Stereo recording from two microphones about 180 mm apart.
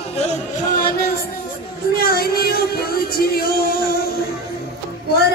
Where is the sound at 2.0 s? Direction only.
55° left (ahead or behind).